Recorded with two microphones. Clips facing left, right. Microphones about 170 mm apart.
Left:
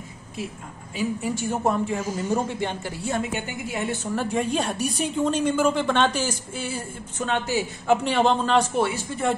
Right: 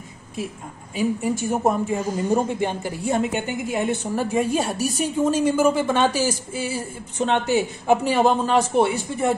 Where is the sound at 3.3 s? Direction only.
50° right (ahead or behind).